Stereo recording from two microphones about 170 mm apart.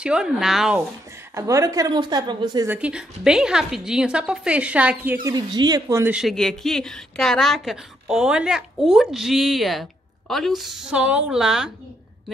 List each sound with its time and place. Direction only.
0.0 s a woman's voice: 5° right (ahead or behind)
1.3 s a woman's voice: 20° right (ahead or behind)
2.7 s a woman's voice: 5° right (ahead or behind)
6.1 s a woman's voice: centre (ahead or behind)